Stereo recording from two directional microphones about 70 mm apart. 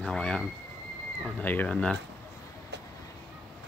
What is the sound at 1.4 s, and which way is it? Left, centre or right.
Speech, left.